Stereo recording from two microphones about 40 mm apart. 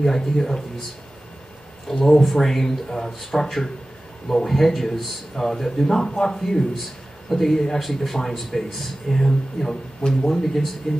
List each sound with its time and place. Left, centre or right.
0.0 s speech: centre
1.9 s speech: centre